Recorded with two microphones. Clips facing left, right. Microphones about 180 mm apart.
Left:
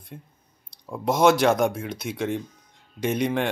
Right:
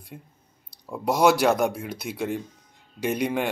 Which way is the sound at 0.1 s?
5° right (ahead or behind).